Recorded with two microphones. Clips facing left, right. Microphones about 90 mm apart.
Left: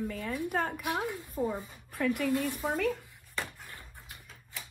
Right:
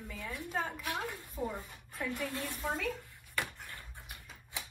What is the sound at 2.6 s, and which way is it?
Speech, 60° left (ahead or behind).